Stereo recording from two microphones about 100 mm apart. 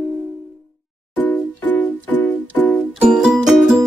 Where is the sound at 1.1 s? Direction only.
15° left (ahead or behind).